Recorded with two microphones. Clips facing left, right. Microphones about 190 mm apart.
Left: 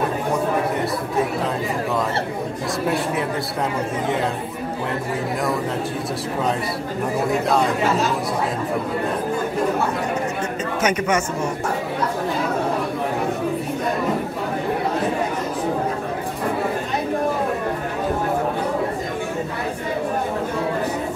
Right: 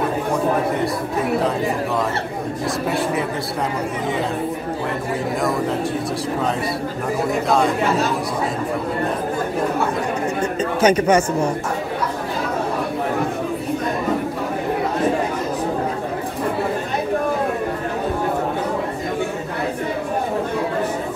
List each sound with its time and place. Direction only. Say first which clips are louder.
10.8 s speech: right 6 dB; 30° right (ahead or behind)